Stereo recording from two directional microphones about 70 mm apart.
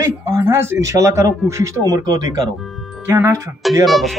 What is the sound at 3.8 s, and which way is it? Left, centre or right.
Speech, centre.